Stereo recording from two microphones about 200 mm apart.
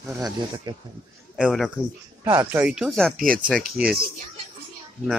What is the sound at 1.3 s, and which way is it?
Speech, centre (ahead or behind).